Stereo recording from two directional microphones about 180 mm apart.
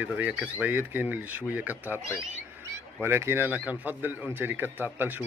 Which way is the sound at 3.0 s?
15° right (ahead or behind).